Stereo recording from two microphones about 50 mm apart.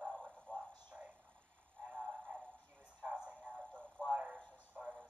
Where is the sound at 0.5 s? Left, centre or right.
Left.